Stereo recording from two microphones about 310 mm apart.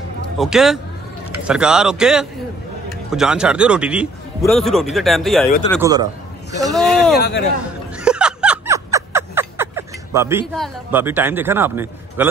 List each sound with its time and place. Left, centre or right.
0.4 s speech: centre
5.8 s a man's voice: centre
6.6 s speech: centre
7.2 s a man's voice: left
8.0 s snicker: centre